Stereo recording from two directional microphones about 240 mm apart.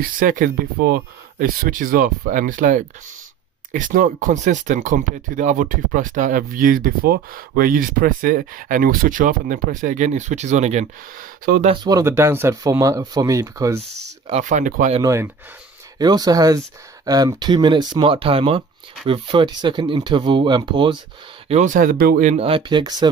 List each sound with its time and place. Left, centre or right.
0.0 s speech: right
11.7 s speech: centre
14.2 s speech: right
15.0 s speech: centre